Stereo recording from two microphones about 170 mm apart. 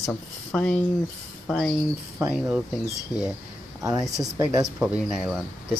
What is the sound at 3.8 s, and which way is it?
Speech, 20° right (ahead or behind).